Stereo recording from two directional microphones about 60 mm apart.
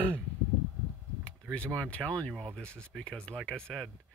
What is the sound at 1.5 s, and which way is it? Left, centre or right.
Speech, centre.